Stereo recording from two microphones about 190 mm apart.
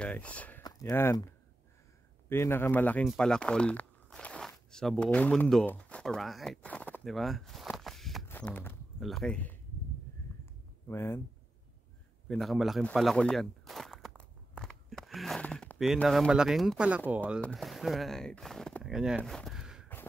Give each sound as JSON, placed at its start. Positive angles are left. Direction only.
{"t": 0.0, "sound": "speech", "side_deg": 5}
{"t": 0.7, "sound": "speech", "side_deg": 20}
{"t": 2.2, "sound": "speech", "side_deg": 15}
{"t": 10.9, "sound": "speech", "side_deg": 15}
{"t": 12.3, "sound": "speech", "side_deg": 0}